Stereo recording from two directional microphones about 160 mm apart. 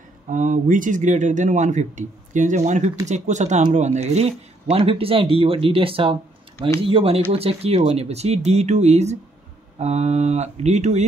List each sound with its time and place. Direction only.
0.3 s speech: 55° right (ahead or behind)